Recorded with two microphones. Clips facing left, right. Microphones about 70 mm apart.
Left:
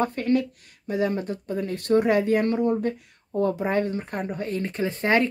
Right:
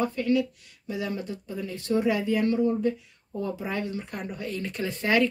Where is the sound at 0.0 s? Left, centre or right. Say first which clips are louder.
Left 2 dB; left.